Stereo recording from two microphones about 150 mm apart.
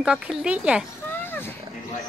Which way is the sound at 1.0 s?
15° left (ahead or behind).